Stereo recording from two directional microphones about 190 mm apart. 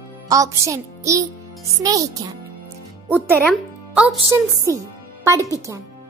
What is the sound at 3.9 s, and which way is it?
A child's voice, 5° right (ahead or behind).